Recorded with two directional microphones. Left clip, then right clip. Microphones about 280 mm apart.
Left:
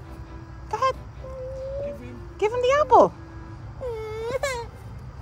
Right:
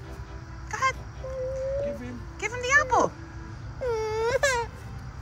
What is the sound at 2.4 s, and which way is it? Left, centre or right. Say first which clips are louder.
Music: left 3 dB; left.